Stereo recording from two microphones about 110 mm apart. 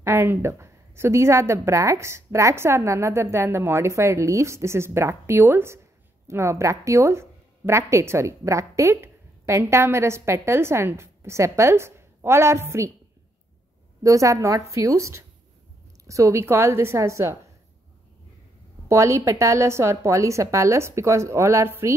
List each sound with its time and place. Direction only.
0.0 s speech: 20° right (ahead or behind)
14.0 s speech: 30° right (ahead or behind)
18.9 s speech: 25° right (ahead or behind)